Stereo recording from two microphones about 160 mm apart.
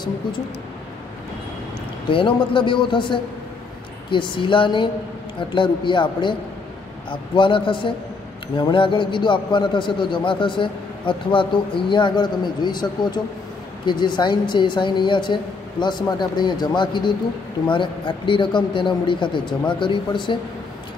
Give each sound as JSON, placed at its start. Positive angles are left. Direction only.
{"t": 2.0, "sound": "a man's voice", "side_deg": 30}